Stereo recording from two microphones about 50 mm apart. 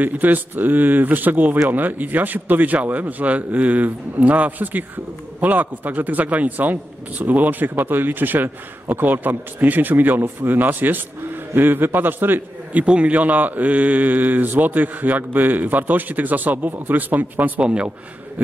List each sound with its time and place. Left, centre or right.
0.0 s a man's voice: right
12.7 s speech: right
17.6 s speech: centre